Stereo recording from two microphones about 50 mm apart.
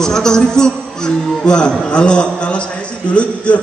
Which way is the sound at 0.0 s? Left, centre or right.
Centre.